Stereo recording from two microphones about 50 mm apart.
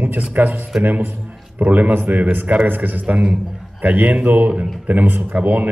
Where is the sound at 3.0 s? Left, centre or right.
Right.